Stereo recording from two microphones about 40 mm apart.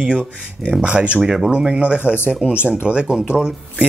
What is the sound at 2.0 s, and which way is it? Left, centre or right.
Speech, left.